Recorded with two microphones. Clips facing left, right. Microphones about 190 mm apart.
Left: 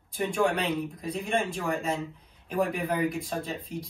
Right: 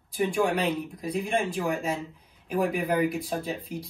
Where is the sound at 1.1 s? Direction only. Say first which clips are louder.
Right 2 dB; 15° right (ahead or behind).